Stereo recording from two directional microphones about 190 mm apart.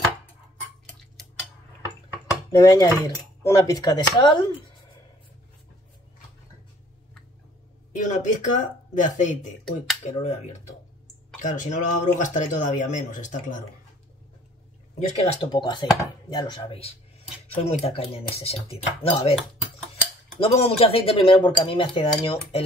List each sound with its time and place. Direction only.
2.5 s speech: 15° left (ahead or behind)
7.9 s speech: 40° left (ahead or behind)
15.0 s speech: 35° left (ahead or behind)
20.3 s speech: 30° left (ahead or behind)